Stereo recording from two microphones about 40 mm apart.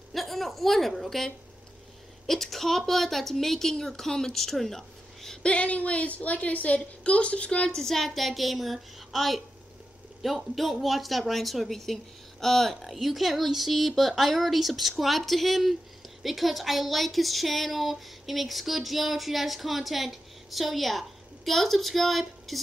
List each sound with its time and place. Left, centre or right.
0.1 s a woman's voice: centre
5.4 s a woman's voice: left
7.7 s speech: centre